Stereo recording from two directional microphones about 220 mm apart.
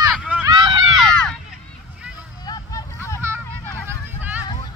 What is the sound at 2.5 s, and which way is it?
Vehicle, 15° left (ahead or behind).